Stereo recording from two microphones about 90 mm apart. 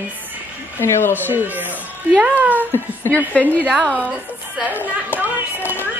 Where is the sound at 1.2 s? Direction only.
20° right (ahead or behind).